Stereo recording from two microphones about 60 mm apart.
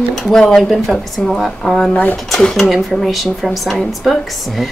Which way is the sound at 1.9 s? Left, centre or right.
Left.